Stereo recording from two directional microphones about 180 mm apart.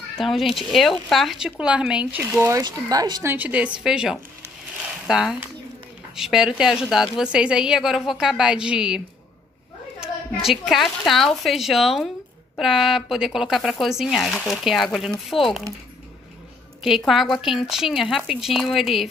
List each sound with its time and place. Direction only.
0.2 s speech: centre (ahead or behind)
2.2 s speech: 15° right (ahead or behind)
3.3 s speech: 5° right (ahead or behind)
16.8 s speech: centre (ahead or behind)